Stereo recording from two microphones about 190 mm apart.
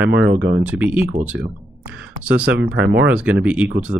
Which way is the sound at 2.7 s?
65° right (ahead or behind).